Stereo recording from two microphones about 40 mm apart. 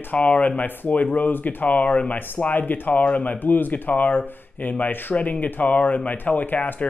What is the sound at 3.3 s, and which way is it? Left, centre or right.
Speech, left.